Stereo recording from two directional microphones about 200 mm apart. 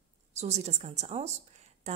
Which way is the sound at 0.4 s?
35° right (ahead or behind).